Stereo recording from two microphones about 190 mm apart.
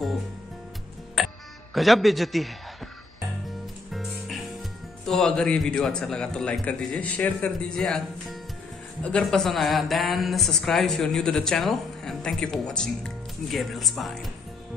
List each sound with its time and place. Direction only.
1.2 s music: centre (ahead or behind)
1.7 s a man's voice: centre (ahead or behind)
3.9 s speech: centre (ahead or behind)